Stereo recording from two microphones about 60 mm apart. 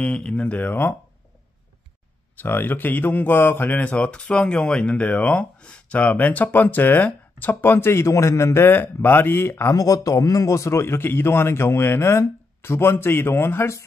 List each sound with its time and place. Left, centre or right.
0.0 s speech: centre; by 0.9 s left
2.3 s speech: left
3.8 s speech: left
9.8 s a man's voice: left